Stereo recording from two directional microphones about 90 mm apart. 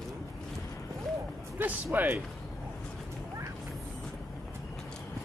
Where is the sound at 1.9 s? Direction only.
20° right (ahead or behind).